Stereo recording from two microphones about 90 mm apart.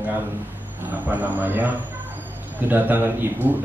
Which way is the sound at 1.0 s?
20° right (ahead or behind).